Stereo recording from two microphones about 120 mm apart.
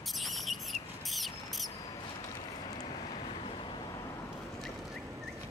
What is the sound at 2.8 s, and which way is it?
Vehicle, 45° left (ahead or behind).